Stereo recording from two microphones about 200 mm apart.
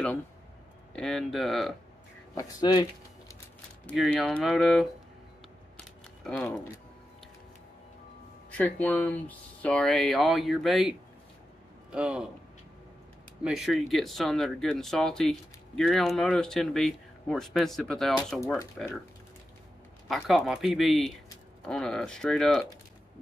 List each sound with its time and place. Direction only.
0.9 s speech: centre (ahead or behind)
2.3 s speech: 20° left (ahead or behind)
3.8 s speech: centre (ahead or behind)
6.2 s speech: 5° left (ahead or behind)
8.5 s speech: 5° left (ahead or behind)
13.4 s speech: centre (ahead or behind)
20.1 s speech: centre (ahead or behind)